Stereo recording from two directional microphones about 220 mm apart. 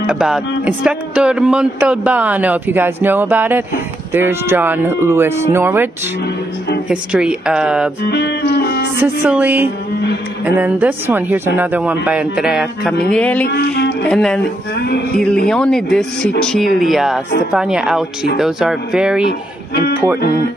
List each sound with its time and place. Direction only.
0.0 s speech: 5° right (ahead or behind)
6.9 s speech: 5° right (ahead or behind)
8.1 s speech: 50° left (ahead or behind)
9.2 s speech: 5° right (ahead or behind)
13.5 s speech: 50° left (ahead or behind)
14.0 s speech: 5° left (ahead or behind)
15.4 s speech: 5° left (ahead or behind)